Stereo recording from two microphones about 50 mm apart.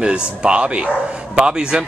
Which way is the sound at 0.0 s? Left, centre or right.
Right.